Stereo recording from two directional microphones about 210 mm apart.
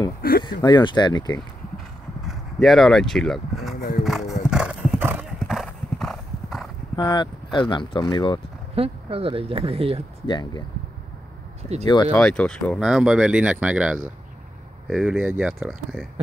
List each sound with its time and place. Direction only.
0.4 s speech: 20° left (ahead or behind)
2.2 s speech: centre (ahead or behind)
4.0 s clip-clop: centre (ahead or behind)
7.0 s speech: 20° left (ahead or behind)
8.7 s speech: 25° right (ahead or behind)
10.2 s speech: 20° left (ahead or behind)
11.8 s speech: 20° left (ahead or behind)
12.1 s speech: 5° left (ahead or behind)